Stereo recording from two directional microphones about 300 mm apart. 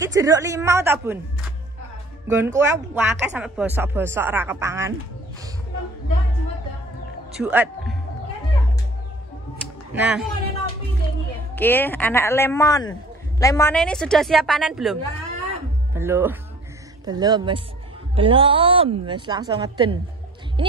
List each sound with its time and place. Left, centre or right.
0.0 s speech: centre
2.2 s speech: centre
7.3 s a woman's voice: centre
9.9 s a woman's voice: centre
11.5 s a woman's voice: centre